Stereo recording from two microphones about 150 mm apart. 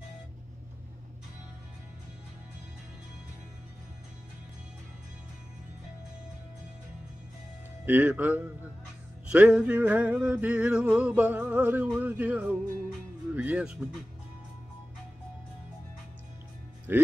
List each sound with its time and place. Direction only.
7.8 s music: 10° right (ahead or behind)
16.9 s music: 15° right (ahead or behind)